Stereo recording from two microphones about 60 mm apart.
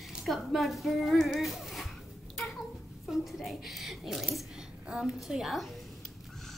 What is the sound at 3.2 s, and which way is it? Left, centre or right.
A woman's voice, centre.